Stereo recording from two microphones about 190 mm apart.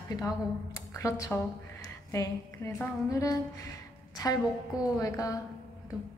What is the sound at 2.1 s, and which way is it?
Music, 15° left (ahead or behind).